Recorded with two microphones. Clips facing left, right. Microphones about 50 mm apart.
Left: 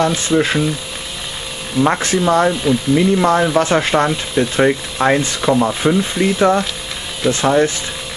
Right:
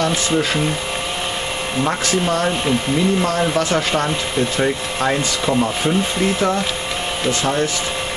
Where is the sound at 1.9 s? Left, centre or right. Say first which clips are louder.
Left 4 dB; left.